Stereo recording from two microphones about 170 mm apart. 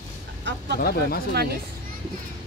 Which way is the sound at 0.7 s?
65° left (ahead or behind).